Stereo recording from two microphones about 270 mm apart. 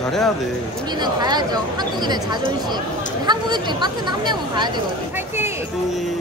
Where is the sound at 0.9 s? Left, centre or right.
Centre.